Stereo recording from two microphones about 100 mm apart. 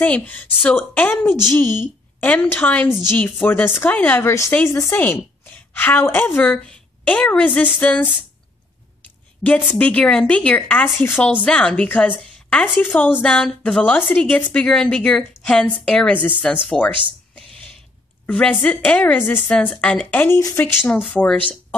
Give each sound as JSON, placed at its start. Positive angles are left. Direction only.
{"t": 0.0, "sound": "a woman's voice", "side_deg": 15}
{"t": 9.4, "sound": "a woman's voice", "side_deg": 15}
{"t": 11.0, "sound": "a woman's voice", "side_deg": 25}
{"t": 11.4, "sound": "a woman's voice", "side_deg": 10}
{"t": 12.2, "sound": "a sound", "side_deg": 10}
{"t": 12.8, "sound": "a woman's voice", "side_deg": 15}
{"t": 18.2, "sound": "a woman's voice", "side_deg": 15}